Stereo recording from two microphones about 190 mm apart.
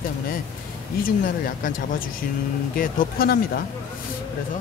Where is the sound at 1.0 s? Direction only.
45° left (ahead or behind).